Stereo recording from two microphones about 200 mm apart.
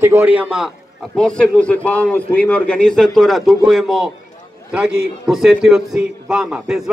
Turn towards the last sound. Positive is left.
turn(degrees=-5)  # may be behind; listen again after turning